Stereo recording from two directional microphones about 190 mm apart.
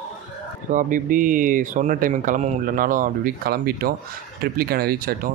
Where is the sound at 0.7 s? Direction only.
45° right (ahead or behind).